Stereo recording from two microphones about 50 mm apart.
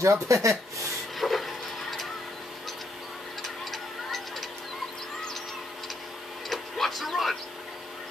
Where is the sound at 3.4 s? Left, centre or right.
Centre.